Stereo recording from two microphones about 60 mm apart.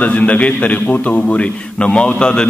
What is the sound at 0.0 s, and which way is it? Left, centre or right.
A man's voice, left.